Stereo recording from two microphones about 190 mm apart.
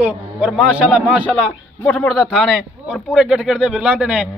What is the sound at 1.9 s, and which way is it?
Speech, 10° left (ahead or behind).